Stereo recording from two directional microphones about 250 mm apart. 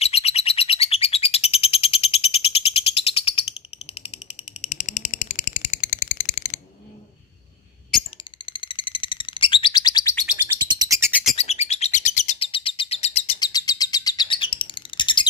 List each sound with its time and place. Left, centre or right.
0.0 s bird: left
4.6 s a sound: left
8.5 s bird: centre
10.8 s bird: centre
11.3 s bird: left